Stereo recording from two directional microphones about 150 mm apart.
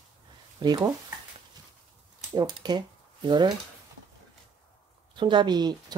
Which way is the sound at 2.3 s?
30° right (ahead or behind).